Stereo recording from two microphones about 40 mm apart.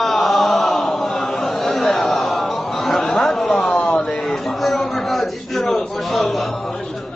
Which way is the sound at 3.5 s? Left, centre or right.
Left.